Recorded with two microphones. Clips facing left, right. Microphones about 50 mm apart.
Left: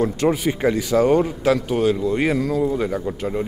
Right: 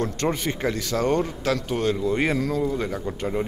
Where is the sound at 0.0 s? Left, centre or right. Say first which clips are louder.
Left 6 dB; centre.